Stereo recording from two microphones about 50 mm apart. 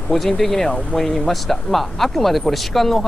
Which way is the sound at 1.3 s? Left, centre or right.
Centre.